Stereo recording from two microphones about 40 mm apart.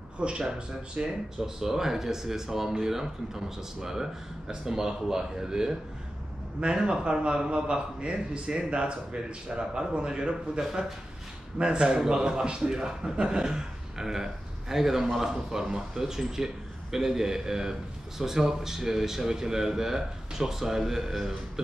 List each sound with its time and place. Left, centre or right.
0.2 s a man's voice: right
10.6 s a man's voice: centre
11.5 s a man's voice: right; by 21.4 s centre